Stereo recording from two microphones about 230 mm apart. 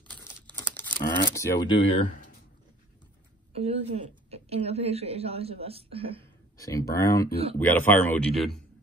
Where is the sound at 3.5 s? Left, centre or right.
Right.